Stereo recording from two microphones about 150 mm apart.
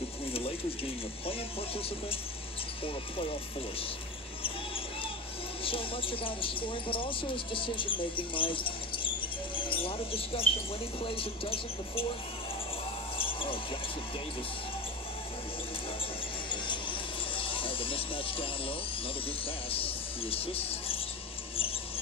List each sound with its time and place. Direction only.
5.6 s speech: 35° left (ahead or behind)
13.2 s basketball bounce: 35° left (ahead or behind)
16.4 s a sound: 30° left (ahead or behind)
19.4 s speech: 40° left (ahead or behind)